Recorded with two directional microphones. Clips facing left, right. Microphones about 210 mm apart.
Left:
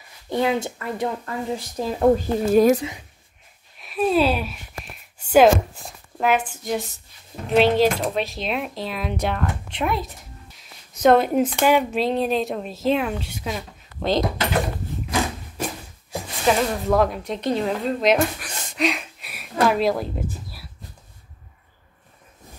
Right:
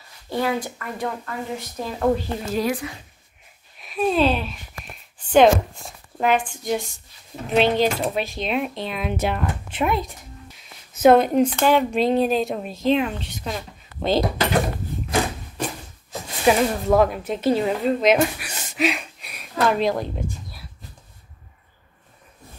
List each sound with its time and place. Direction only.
0.3 s speech: 20° left (ahead or behind)
2.1 s a woman's voice: 50° left (ahead or behind)
3.8 s speech: centre (ahead or behind)
16.1 s a sound: 10° left (ahead or behind)
16.4 s speech: centre (ahead or behind)